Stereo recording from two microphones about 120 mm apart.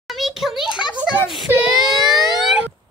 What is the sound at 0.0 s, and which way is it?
Speech, centre (ahead or behind).